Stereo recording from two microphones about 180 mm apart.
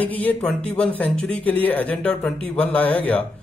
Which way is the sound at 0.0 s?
10° left (ahead or behind).